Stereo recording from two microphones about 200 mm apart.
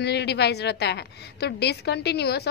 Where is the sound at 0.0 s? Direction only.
55° left (ahead or behind).